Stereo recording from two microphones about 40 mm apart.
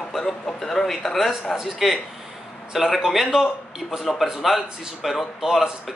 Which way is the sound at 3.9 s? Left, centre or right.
Centre.